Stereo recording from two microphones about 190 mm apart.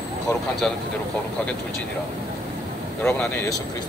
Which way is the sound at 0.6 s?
5° left (ahead or behind).